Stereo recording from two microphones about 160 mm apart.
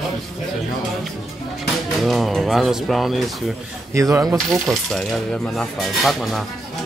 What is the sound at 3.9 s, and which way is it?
Speech, 20° right (ahead or behind).